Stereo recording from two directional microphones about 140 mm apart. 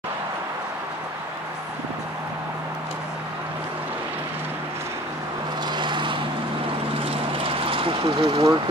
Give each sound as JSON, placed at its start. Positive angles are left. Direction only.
{"t": 5.7, "sound": "vehicle", "side_deg": -35}